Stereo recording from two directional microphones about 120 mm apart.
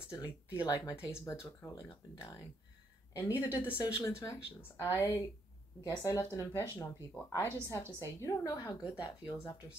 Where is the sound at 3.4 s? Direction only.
25° left (ahead or behind).